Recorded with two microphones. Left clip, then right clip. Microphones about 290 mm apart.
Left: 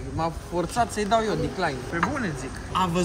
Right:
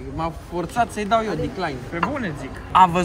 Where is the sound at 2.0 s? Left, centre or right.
Centre.